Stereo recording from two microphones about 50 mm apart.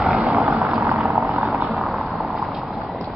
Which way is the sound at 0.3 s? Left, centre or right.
Centre.